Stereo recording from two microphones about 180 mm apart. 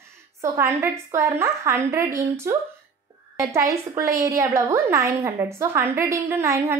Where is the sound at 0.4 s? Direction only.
15° right (ahead or behind).